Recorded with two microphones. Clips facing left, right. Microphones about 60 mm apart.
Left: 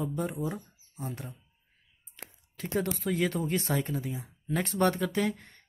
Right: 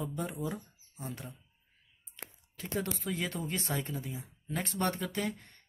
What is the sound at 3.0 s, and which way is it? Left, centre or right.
Speech, left.